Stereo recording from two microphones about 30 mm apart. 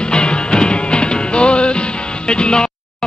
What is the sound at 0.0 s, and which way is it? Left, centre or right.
Music, left.